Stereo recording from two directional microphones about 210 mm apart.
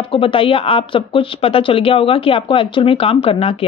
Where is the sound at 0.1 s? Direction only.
25° left (ahead or behind).